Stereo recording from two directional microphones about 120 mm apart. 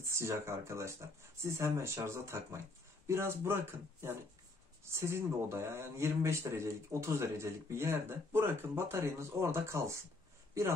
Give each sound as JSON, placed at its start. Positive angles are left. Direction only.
{"t": 0.1, "sound": "speech", "side_deg": -20}